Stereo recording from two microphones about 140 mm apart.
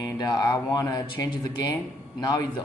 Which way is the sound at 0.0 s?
30° left (ahead or behind).